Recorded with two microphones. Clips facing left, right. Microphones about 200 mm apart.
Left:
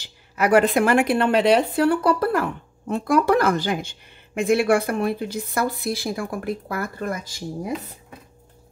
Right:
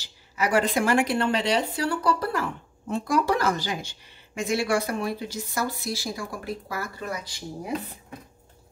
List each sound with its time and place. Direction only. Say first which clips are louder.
0.0 s speech: left 5 dB; 60° left (ahead or behind)